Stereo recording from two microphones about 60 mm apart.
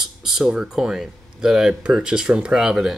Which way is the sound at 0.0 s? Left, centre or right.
Centre.